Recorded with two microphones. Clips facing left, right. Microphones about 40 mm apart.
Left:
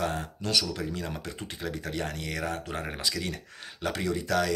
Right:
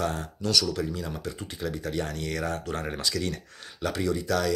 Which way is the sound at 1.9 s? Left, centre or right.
Left.